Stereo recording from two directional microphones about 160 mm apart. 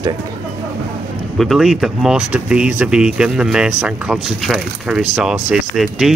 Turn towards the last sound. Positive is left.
turn(degrees=-5)  # may be behind; listen again after turning